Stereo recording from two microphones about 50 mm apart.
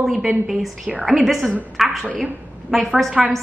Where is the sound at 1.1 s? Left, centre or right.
Centre.